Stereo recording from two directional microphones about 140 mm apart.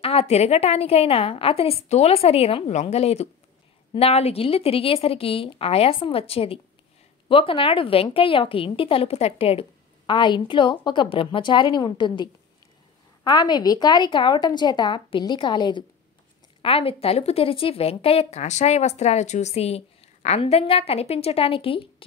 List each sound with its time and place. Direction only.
0.0 s a woman's voice: 45° left (ahead or behind)